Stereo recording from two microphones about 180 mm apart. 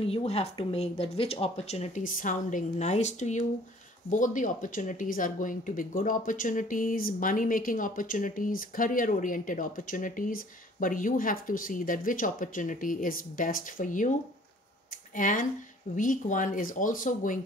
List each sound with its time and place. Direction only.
0.0 s speech: 30° left (ahead or behind)
15.1 s speech: 45° left (ahead or behind)